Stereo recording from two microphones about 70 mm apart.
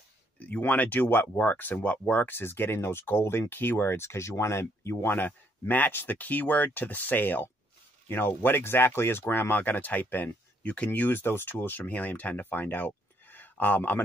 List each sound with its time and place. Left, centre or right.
0.4 s speech: left
5.1 s speech: left